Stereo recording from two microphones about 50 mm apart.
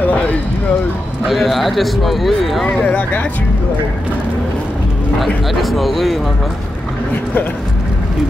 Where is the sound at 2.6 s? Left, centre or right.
Left.